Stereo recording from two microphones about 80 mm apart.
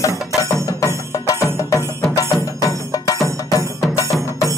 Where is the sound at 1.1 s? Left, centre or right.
Left.